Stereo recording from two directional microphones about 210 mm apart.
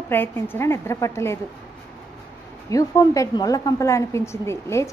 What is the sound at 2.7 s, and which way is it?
A woman's voice, 15° left (ahead or behind).